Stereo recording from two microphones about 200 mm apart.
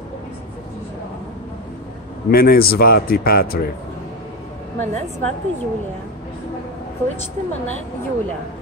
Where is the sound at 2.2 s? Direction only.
50° left (ahead or behind).